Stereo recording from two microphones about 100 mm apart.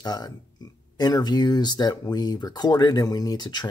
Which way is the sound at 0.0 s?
40° left (ahead or behind).